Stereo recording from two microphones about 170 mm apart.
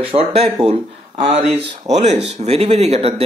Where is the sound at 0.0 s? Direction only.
35° right (ahead or behind).